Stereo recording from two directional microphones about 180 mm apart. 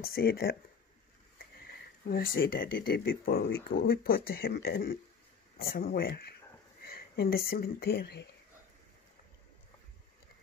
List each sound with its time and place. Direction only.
0.0 s speech: 60° left (ahead or behind)
2.0 s speech: 55° left (ahead or behind)